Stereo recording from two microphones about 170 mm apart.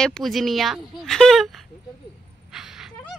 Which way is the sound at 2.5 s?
5° right (ahead or behind).